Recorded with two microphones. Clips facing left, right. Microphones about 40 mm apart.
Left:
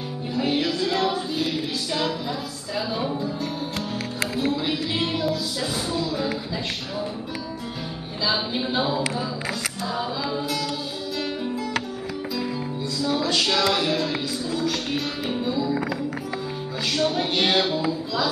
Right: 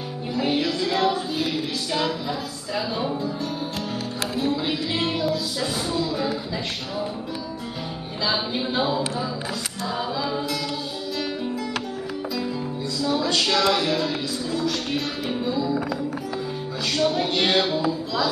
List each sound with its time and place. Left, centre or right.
0.3 s music: centre
2.7 s speech: centre
4.5 s music: centre
8.3 s speech: centre
9.9 s music: centre
13.2 s a sound: centre
13.7 s music: centre
16.9 s speech: centre